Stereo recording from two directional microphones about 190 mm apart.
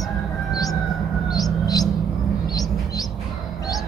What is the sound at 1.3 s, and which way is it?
Bird, 20° left (ahead or behind).